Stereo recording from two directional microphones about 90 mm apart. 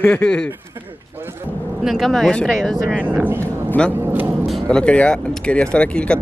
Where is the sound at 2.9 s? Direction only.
15° right (ahead or behind).